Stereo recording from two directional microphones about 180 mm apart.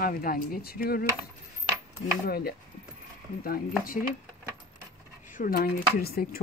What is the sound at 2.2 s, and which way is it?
Speech, 55° left (ahead or behind).